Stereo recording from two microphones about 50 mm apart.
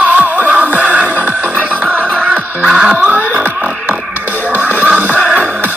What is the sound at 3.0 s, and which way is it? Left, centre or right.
Music, right.